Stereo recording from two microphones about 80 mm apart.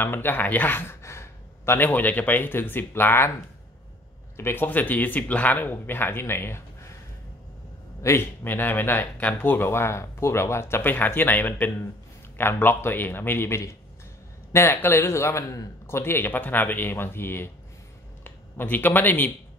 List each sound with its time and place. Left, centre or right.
0.0 s speech: left
4.4 s speech: left
4.6 s speech: left
8.0 s speech: left
15.9 s speech: left